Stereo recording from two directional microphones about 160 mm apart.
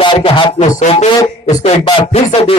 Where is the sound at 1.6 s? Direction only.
35° left (ahead or behind).